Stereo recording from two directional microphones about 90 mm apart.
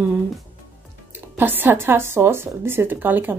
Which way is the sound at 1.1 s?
25° right (ahead or behind).